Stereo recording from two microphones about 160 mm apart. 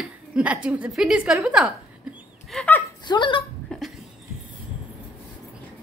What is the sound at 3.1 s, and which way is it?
Speech, 30° left (ahead or behind).